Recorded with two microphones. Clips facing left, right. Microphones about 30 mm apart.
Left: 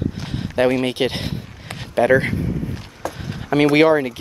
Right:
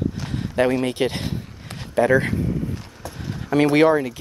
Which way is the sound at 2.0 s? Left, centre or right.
Left.